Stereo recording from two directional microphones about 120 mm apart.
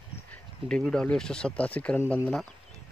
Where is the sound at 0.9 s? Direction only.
5° left (ahead or behind).